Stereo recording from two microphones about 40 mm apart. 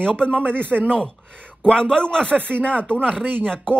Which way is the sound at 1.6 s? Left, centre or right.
Centre.